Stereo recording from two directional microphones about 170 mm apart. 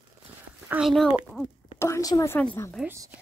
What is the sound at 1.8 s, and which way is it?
A woman's voice, 20° left (ahead or behind).